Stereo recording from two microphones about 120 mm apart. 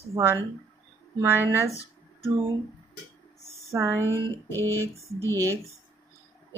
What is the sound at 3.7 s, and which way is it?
Speech, 25° right (ahead or behind).